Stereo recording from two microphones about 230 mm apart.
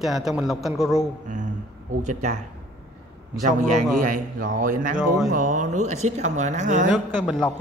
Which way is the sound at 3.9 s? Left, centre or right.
Right.